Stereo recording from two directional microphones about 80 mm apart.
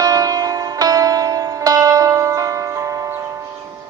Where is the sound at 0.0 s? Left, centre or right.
Right.